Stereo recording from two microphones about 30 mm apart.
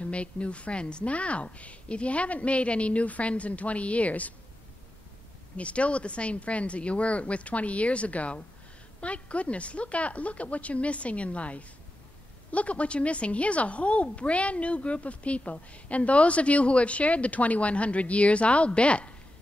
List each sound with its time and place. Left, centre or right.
0.0 s a woman's voice: left
1.1 s a woman's voice: left
5.6 s a woman's voice: left